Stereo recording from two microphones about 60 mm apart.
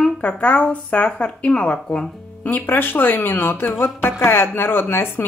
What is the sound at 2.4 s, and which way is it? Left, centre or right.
Speech, left.